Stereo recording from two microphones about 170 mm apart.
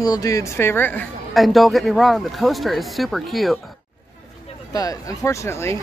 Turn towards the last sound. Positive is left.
turn(degrees=15)  # may be behind; listen again after turning